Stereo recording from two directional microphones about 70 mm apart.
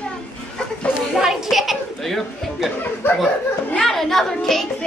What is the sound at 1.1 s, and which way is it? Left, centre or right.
Chatter, centre.